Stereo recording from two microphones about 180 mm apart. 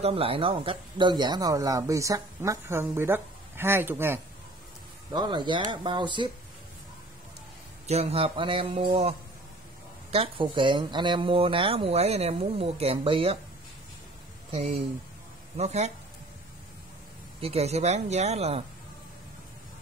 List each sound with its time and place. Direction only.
0.0 s speech: 30° right (ahead or behind); by 4.2 s 10° right (ahead or behind)
5.1 s speech: 25° right (ahead or behind)
7.8 s speech: 35° right (ahead or behind)
10.1 s speech: 30° right (ahead or behind)
15.5 s speech: 40° right (ahead or behind)
17.4 s speech: 35° right (ahead or behind)